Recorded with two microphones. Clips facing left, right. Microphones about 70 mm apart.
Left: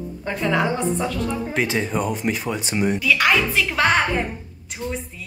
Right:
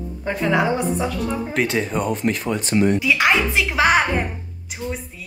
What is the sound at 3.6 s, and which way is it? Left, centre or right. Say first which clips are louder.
Speech: right 2 dB; centre.